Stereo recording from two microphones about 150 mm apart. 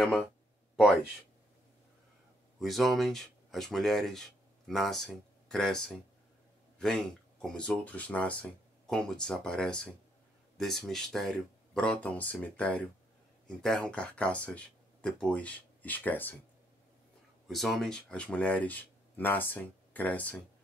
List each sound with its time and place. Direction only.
2.6 s speech: centre (ahead or behind)
7.4 s speech: 5° left (ahead or behind)
17.5 s speech: centre (ahead or behind)